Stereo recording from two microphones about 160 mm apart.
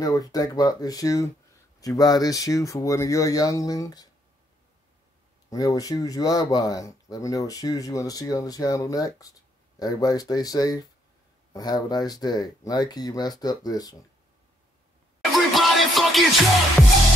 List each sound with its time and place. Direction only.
0.0 s speech: 25° left (ahead or behind)
5.5 s speech: 20° left (ahead or behind)
15.3 s music: centre (ahead or behind)